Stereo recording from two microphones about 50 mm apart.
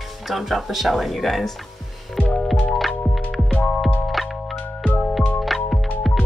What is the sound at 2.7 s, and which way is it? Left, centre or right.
Music, centre.